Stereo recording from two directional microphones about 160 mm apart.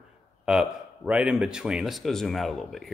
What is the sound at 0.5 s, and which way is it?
Speech, 5° right (ahead or behind).